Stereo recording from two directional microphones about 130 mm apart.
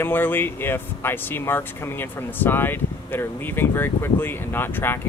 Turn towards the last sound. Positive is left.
turn(degrees=15)  # may be behind; listen again after turning